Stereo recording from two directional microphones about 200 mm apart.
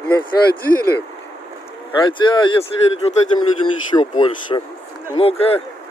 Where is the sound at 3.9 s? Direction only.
15° left (ahead or behind).